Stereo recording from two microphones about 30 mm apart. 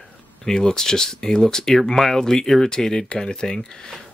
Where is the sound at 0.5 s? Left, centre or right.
Left.